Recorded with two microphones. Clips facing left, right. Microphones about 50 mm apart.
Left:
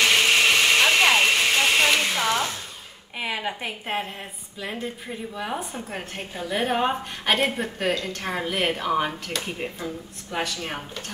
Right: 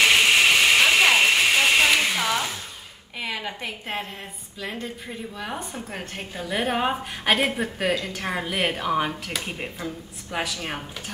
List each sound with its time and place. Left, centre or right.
0.0 s vehicle: centre
3.2 s a woman's voice: centre